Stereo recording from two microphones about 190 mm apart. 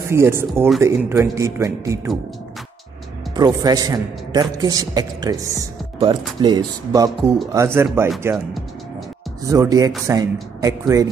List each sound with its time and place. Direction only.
0.1 s speech: 15° right (ahead or behind)
3.3 s a man's voice: 20° right (ahead or behind)
9.4 s speech: 15° right (ahead or behind)